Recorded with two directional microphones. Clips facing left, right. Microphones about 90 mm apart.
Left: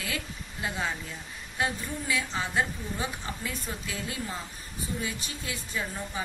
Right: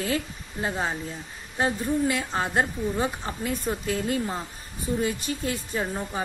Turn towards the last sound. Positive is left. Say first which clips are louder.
# right 5 dB
turn(degrees=-35)  # may be behind; listen again after turning